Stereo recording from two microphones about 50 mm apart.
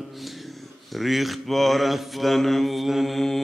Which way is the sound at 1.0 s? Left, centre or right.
Centre.